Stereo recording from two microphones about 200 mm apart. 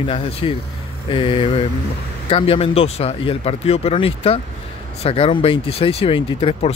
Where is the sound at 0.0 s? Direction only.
30° left (ahead or behind).